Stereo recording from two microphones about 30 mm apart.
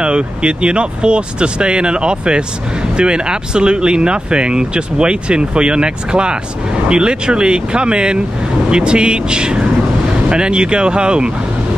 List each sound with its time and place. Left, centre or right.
0.0 s speech: right